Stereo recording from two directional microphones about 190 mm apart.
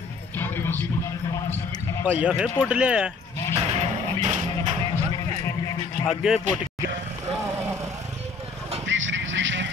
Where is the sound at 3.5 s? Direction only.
35° right (ahead or behind).